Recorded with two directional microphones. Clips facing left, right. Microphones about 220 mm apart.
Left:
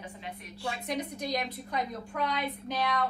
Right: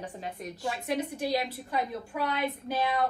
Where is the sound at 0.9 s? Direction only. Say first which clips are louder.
Right 4 dB; 5° right (ahead or behind).